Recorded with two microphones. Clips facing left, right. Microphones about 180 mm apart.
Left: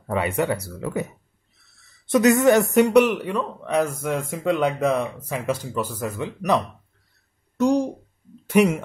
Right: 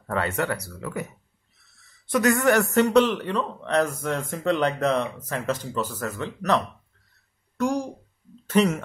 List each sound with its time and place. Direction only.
0.0 s speech: 15° left (ahead or behind)
2.0 s speech: 20° left (ahead or behind)
7.5 s a sound: 20° left (ahead or behind)
8.5 s speech: 10° left (ahead or behind)